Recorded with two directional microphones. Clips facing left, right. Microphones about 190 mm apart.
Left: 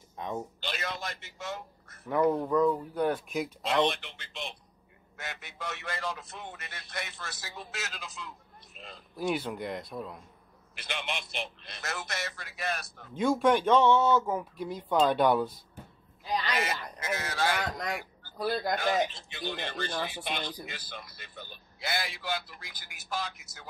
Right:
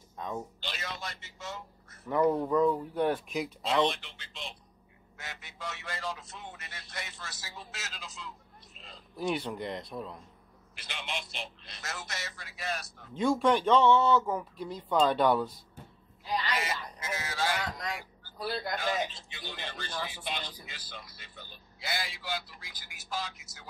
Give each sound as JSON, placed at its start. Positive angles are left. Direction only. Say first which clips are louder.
{"t": 0.6, "sound": "a sound", "louder": "left 4 dB", "side_deg": 55}
{"t": 2.0, "sound": "speech", "louder": "even", "side_deg": 5}
{"t": 3.8, "sound": "speech", "louder": "left 1 dB", "side_deg": 55}
{"t": 8.7, "sound": "a sound", "louder": "left 5 dB", "side_deg": 55}
{"t": 9.1, "sound": "speech", "louder": "left 1 dB", "side_deg": 5}
{"t": 10.7, "sound": "speech", "louder": "left 3 dB", "side_deg": 60}
{"t": 13.1, "sound": "speech", "louder": "left 1 dB", "side_deg": 0}
{"t": 16.5, "sound": "speech", "louder": "left 2 dB", "side_deg": 60}